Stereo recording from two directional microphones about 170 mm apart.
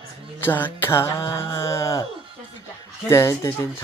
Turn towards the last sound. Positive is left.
turn(degrees=15)  # may be behind; listen again after turning